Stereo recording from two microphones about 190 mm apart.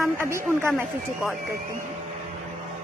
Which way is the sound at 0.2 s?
15° right (ahead or behind).